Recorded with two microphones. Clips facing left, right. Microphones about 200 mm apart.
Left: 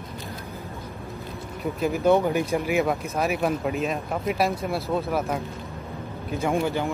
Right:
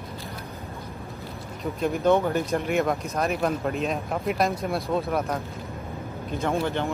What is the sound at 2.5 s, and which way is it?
Speech, 5° left (ahead or behind).